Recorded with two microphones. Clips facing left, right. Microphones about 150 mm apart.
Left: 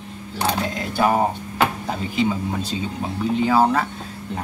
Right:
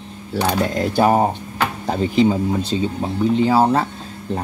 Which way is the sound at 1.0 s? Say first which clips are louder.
Right 3 dB; 35° right (ahead or behind).